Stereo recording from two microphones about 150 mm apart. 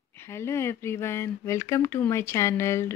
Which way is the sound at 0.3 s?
15° left (ahead or behind).